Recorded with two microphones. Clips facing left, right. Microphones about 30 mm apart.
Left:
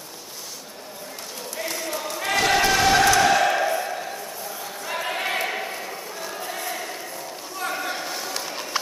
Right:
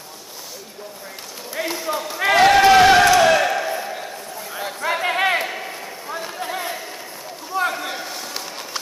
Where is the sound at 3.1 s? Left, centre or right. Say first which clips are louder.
Right 3 dB; centre.